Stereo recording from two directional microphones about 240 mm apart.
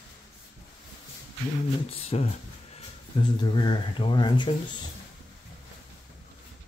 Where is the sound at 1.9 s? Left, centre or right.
Left.